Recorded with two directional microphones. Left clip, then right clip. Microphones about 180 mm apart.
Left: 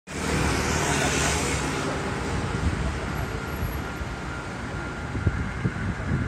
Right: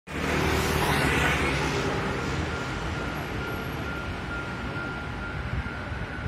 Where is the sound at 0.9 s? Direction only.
40° left (ahead or behind).